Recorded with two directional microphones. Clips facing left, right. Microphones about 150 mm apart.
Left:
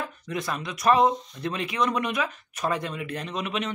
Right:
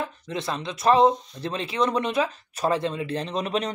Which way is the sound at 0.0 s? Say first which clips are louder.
Right 2 dB; 25° right (ahead or behind).